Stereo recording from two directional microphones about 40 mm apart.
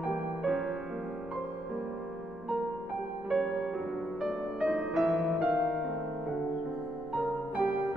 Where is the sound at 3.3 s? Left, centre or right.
Centre.